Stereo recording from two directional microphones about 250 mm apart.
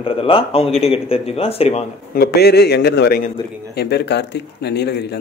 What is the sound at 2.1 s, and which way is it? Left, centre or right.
A man's voice, left.